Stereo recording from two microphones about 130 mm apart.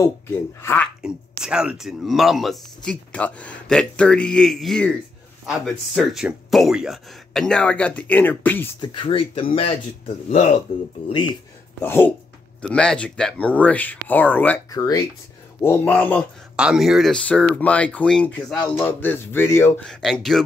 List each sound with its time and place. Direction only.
0.6 s speech: 20° left (ahead or behind)
1.0 s speech: 5° right (ahead or behind)
5.5 s speech: 5° right (ahead or behind); by 8.6 s 15° left (ahead or behind)
8.8 s speech: 40° left (ahead or behind)
11.8 s speech: 15° left (ahead or behind)
14.7 s speech: 25° left (ahead or behind)
15.6 s speech: 15° left (ahead or behind)
16.5 s speech: 5° right (ahead or behind); by 19.7 s 20° left (ahead or behind)
19.9 s speech: 5° left (ahead or behind)